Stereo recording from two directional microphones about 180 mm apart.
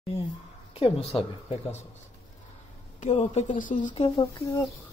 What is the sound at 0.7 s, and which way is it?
Speech, 35° left (ahead or behind).